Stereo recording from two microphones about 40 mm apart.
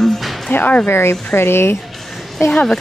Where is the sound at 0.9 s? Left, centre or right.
Left.